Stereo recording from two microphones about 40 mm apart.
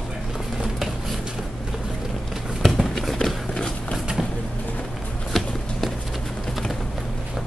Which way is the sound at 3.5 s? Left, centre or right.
Centre.